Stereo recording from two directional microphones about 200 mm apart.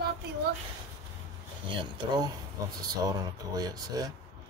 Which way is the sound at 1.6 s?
20° right (ahead or behind).